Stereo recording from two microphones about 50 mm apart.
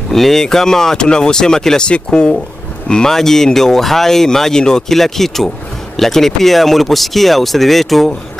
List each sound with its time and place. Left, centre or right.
0.1 s speech: centre